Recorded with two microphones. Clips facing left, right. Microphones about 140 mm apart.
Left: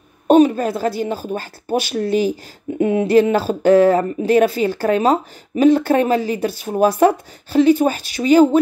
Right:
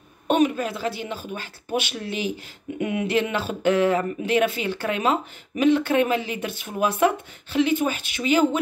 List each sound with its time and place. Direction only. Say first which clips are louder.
0.3 s speech: left 8 dB; 35° left (ahead or behind)